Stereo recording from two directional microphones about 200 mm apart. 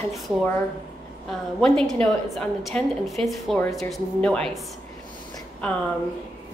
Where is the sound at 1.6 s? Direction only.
5° left (ahead or behind).